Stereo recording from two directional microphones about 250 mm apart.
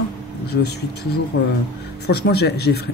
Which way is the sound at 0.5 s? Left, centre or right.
Left.